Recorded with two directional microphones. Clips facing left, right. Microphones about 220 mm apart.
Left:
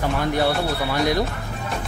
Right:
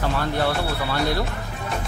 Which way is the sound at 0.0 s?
15° left (ahead or behind).